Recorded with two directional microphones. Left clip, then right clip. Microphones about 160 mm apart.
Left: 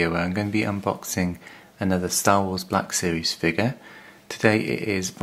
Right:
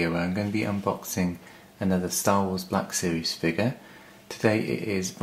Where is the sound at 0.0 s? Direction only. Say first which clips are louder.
Left 4 dB; 30° left (ahead or behind).